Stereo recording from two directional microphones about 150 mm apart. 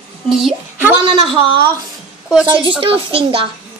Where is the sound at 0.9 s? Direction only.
35° right (ahead or behind).